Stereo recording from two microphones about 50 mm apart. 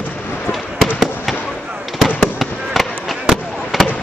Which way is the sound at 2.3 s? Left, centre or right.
Centre.